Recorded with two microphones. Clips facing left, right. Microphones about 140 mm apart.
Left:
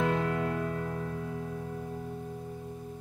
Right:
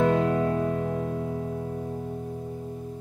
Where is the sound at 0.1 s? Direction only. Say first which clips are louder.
Right 7 dB; 25° right (ahead or behind).